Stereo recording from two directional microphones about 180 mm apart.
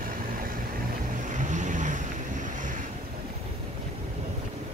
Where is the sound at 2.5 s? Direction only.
45° right (ahead or behind).